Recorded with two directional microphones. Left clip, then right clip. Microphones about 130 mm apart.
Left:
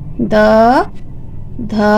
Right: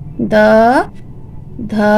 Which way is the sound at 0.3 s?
15° right (ahead or behind).